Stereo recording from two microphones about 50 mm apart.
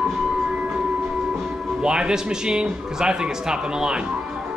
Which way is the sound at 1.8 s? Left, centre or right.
Centre.